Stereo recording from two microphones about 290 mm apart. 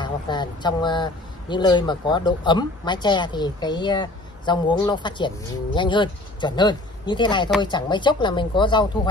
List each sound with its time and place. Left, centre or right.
0.0 s speech: centre